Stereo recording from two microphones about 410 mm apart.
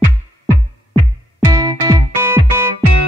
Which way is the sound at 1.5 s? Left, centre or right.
Centre.